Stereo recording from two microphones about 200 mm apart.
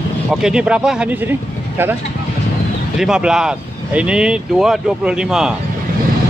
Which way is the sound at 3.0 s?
5° right (ahead or behind).